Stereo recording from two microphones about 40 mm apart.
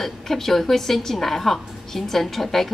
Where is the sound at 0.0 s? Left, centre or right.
Centre.